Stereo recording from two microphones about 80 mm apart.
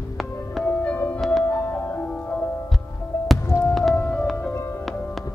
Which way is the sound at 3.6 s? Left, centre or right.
Centre.